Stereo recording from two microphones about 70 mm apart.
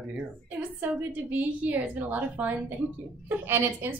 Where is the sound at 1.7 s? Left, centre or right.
Right.